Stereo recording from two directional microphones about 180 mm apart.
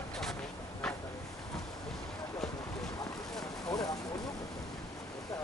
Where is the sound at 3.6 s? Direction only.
20° left (ahead or behind).